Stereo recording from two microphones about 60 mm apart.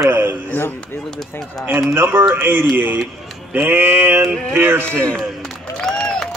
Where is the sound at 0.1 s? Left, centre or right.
Right.